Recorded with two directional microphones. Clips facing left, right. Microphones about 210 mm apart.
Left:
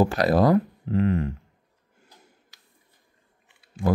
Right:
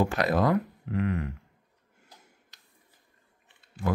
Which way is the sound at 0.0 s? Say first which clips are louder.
Left 5 dB; 35° left (ahead or behind).